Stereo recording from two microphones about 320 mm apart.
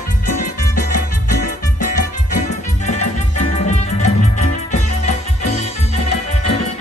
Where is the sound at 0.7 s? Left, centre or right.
Left.